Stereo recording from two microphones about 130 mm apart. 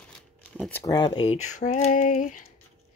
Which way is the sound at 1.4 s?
65° left (ahead or behind).